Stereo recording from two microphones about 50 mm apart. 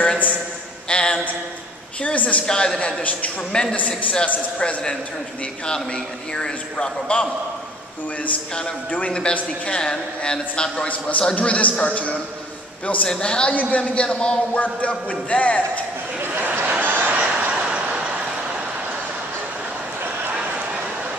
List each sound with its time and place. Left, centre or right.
0.8 s a sound: centre
2.0 s a man's voice: left
2.4 s a man's voice: centre
3.0 s a man's voice: left
3.5 s a man's voice: centre
6.3 s a man's voice: centre
9.1 s a man's voice: centre
16.3 s a sound: right